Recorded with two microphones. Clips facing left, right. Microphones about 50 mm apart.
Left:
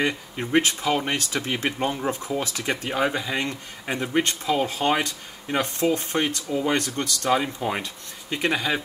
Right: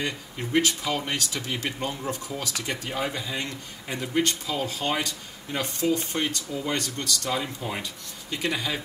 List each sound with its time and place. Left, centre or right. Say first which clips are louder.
0.6 s speech: left 3 dB; left